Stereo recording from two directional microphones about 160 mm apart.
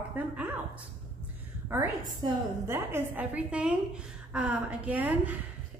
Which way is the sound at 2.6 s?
15° right (ahead or behind).